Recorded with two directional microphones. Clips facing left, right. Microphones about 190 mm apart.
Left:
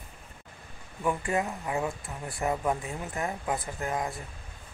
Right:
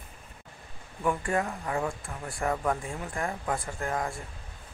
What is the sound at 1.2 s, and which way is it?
Speech, 15° left (ahead or behind).